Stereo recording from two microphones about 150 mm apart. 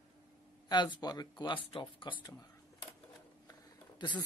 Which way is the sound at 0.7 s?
30° left (ahead or behind).